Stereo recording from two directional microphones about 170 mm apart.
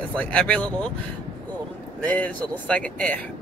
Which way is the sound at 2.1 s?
10° left (ahead or behind).